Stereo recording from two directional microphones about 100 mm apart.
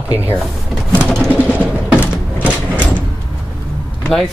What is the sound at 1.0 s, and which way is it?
Vehicle, 5° left (ahead or behind).